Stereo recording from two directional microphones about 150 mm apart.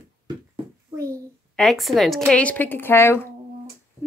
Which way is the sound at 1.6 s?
Centre (ahead or behind).